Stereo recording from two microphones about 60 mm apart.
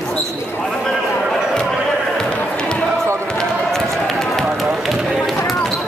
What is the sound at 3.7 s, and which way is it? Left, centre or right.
Run, centre.